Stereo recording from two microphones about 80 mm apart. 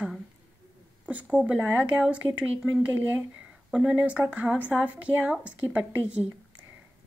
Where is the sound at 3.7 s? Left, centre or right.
Centre.